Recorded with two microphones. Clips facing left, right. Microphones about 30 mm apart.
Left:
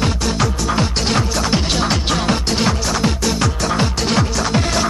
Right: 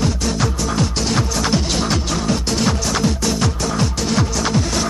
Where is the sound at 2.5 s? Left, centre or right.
Left.